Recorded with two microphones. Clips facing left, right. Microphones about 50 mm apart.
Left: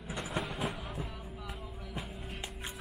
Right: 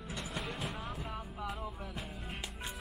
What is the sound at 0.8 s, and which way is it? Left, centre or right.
Vehicle, centre.